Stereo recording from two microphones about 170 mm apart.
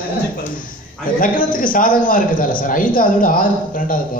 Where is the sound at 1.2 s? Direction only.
55° left (ahead or behind).